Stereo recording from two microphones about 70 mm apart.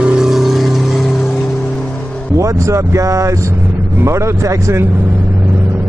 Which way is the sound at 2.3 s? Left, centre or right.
Right.